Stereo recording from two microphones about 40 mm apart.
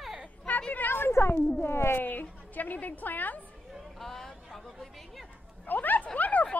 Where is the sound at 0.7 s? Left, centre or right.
Left.